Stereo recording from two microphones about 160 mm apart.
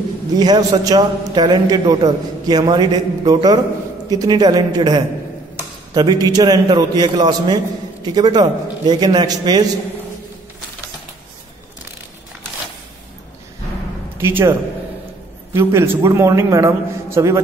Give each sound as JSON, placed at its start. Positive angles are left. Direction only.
{"t": 0.3, "sound": "a man's voice", "side_deg": -25}
{"t": 14.1, "sound": "a man's voice", "side_deg": -15}
{"t": 15.5, "sound": "a man's voice", "side_deg": -15}